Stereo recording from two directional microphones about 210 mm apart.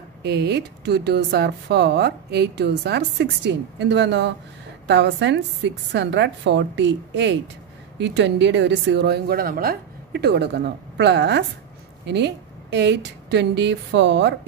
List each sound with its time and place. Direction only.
0.2 s a woman's voice: 50° right (ahead or behind)